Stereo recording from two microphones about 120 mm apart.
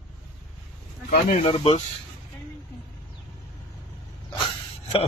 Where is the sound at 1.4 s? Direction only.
50° left (ahead or behind).